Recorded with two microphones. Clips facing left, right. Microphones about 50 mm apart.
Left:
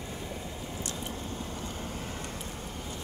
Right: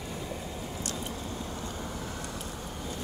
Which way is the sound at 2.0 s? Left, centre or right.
Left.